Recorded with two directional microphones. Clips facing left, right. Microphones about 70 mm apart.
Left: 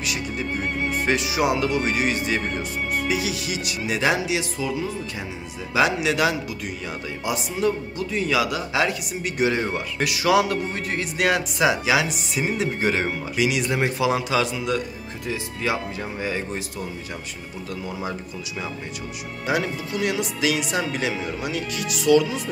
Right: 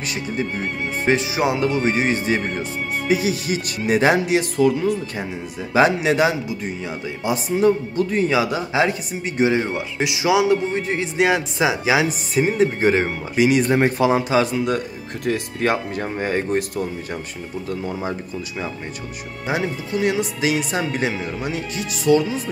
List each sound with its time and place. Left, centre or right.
1.0 s speech: right
5.7 s speech: right
8.3 s speech: right
9.6 s speech: centre; by 17.2 s right
17.6 s speech: right
19.4 s speech: right